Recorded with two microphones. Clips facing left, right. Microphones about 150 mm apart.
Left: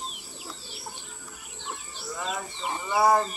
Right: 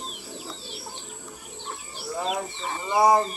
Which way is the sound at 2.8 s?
20° right (ahead or behind).